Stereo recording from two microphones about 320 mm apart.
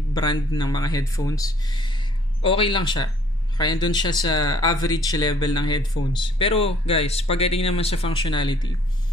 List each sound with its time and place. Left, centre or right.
0.1 s speech: centre